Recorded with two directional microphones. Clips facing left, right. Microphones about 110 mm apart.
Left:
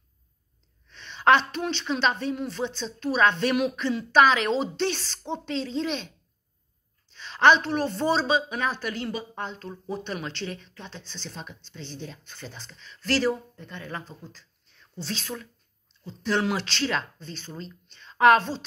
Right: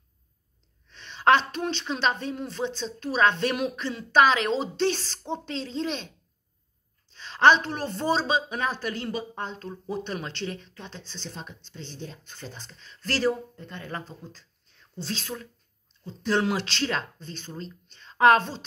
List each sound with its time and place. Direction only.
0.9 s a woman's voice: 35° right (ahead or behind)
7.2 s speech: 35° right (ahead or behind)
12.1 s a woman's voice: 40° right (ahead or behind)